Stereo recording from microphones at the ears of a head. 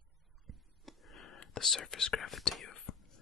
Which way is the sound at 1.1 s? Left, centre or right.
Left.